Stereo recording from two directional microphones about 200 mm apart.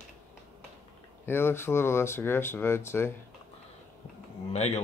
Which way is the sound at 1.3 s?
10° left (ahead or behind).